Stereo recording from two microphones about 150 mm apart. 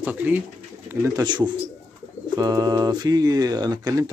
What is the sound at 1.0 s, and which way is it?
Speech, 25° right (ahead or behind).